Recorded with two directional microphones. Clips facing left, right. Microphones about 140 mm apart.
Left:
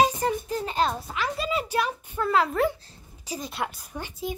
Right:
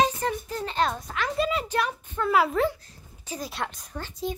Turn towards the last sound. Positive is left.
turn(degrees=10)  # may be behind; listen again after turning